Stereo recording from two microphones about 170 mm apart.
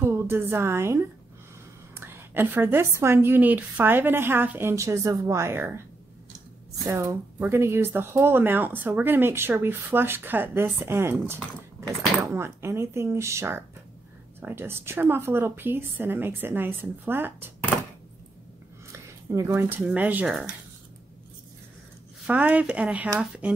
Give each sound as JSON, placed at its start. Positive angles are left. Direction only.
{"t": 0.0, "sound": "a woman's voice", "side_deg": -15}
{"t": 6.9, "sound": "speech", "side_deg": -15}
{"t": 18.9, "sound": "speech", "side_deg": -15}
{"t": 22.2, "sound": "speech", "side_deg": -10}